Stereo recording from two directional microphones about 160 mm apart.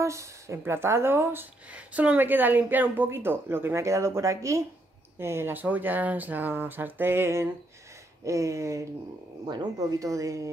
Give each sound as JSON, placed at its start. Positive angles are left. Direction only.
{"t": 0.0, "sound": "speech", "side_deg": -20}